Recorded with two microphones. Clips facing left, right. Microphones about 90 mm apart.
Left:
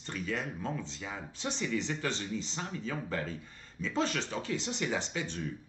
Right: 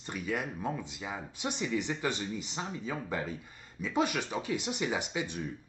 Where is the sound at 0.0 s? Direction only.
15° right (ahead or behind).